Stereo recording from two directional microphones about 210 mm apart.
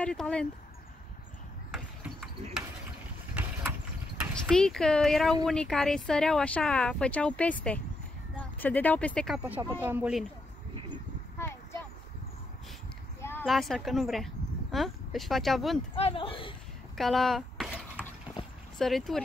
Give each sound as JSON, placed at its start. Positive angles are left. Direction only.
{"t": 0.0, "sound": "speech", "side_deg": 5}
{"t": 4.2, "sound": "speech", "side_deg": 5}
{"t": 9.4, "sound": "speech", "side_deg": -10}
{"t": 11.3, "sound": "a sound", "side_deg": 10}
{"t": 13.2, "sound": "a sound", "side_deg": 10}
{"t": 13.5, "sound": "speech", "side_deg": 0}
{"t": 16.0, "sound": "speech", "side_deg": 25}
{"t": 16.9, "sound": "a sound", "side_deg": 0}
{"t": 18.8, "sound": "speech", "side_deg": 0}